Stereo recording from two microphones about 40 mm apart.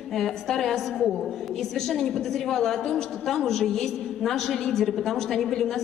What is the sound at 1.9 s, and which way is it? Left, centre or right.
A woman's voice, centre.